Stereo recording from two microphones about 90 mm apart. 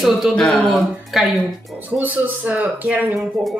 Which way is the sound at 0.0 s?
Centre (ahead or behind).